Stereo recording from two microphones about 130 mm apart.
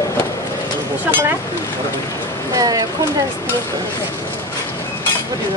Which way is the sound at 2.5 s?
25° right (ahead or behind).